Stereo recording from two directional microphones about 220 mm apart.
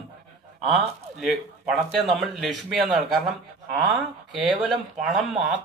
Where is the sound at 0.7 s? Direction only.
Centre (ahead or behind).